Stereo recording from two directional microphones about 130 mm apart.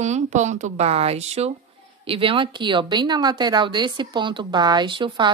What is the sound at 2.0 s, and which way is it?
Speech, 45° right (ahead or behind).